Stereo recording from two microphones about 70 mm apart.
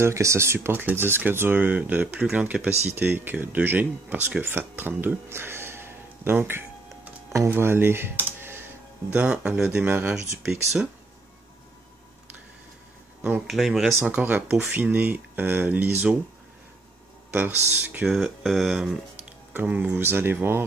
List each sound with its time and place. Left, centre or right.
0.0 s speech: right
9.3 s speech: centre
9.8 s speech: right
10.2 s speech: right
13.5 s speech: centre
14.0 s speech: right
17.3 s speech: right
18.1 s speech: centre
19.5 s speech: right